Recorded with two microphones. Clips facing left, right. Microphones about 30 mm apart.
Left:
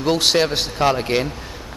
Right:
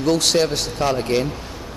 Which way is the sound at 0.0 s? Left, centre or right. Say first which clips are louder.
Even; centre.